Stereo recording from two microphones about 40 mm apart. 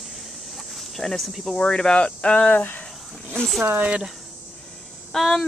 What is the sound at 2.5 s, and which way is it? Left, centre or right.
Speech, left.